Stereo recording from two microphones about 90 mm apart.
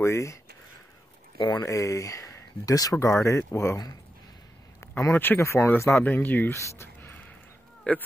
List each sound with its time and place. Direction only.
0.0 s speech: 35° left (ahead or behind)
1.4 s speech: 50° left (ahead or behind)
1.7 s speech: 35° left (ahead or behind)
4.7 s speech: 30° left (ahead or behind)
6.5 s a sound: 30° left (ahead or behind)
7.9 s speech: 15° left (ahead or behind)